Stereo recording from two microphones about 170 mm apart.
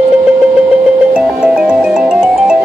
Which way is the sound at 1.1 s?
5° right (ahead or behind).